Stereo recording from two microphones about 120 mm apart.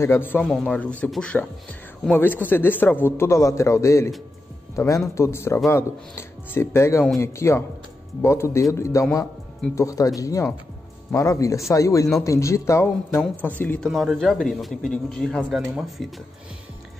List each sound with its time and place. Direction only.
0.0 s speech: 20° left (ahead or behind)
13.8 s a man's voice: centre (ahead or behind)